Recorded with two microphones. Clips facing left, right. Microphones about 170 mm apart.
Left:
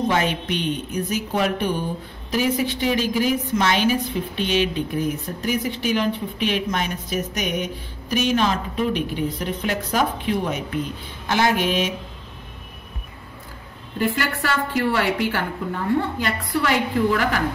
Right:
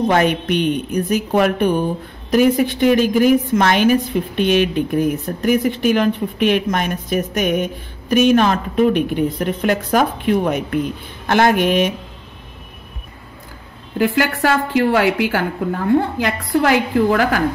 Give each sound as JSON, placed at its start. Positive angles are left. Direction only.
{"t": 0.0, "sound": "a woman's voice", "side_deg": -55}
{"t": 13.9, "sound": "a woman's voice", "side_deg": -60}